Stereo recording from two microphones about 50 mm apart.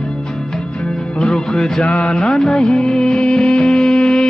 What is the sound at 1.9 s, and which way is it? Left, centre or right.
Music, left.